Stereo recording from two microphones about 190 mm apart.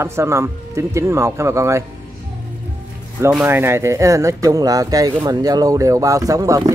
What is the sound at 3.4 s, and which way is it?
A man's voice, 10° right (ahead or behind).